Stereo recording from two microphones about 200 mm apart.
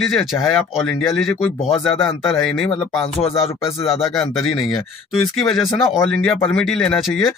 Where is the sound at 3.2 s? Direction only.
30° left (ahead or behind).